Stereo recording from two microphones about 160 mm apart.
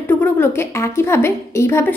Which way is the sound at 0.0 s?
15° left (ahead or behind).